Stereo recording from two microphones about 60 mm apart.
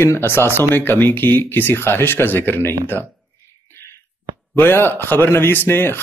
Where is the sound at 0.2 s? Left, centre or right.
Left.